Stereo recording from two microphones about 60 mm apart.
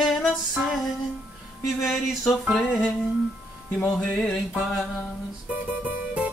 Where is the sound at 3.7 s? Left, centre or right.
Left.